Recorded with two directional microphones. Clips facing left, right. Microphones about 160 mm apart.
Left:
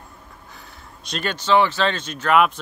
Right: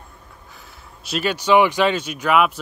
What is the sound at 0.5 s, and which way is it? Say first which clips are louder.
Speech: even; centre (ahead or behind).